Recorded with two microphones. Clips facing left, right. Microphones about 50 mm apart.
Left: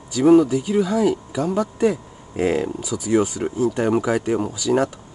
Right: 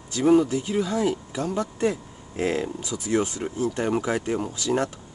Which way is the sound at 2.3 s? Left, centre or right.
Centre.